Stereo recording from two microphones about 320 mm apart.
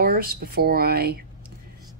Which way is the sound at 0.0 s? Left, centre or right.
Right.